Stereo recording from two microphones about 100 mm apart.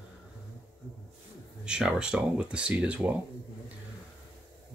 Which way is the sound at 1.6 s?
5° right (ahead or behind).